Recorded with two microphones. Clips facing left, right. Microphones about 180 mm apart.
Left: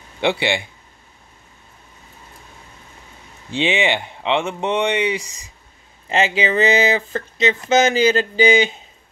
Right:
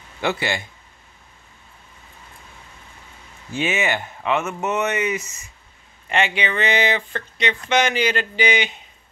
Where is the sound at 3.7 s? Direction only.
15° left (ahead or behind).